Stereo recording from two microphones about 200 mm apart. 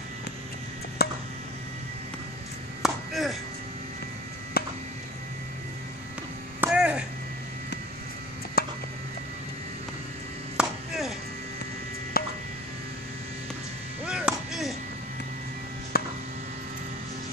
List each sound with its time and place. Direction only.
1.0 s chop: 50° left (ahead or behind)
2.8 s chopping: centre (ahead or behind)
4.6 s a sound: 50° left (ahead or behind)
6.6 s a sound: 5° right (ahead or behind)
8.6 s music: 50° left (ahead or behind)
10.6 s chopping: centre (ahead or behind)
12.2 s music: 50° left (ahead or behind)
14.0 s chop: 5° right (ahead or behind)
15.9 s a sound: 50° left (ahead or behind)